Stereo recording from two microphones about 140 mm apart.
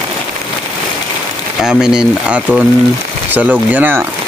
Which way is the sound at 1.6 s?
5° right (ahead or behind).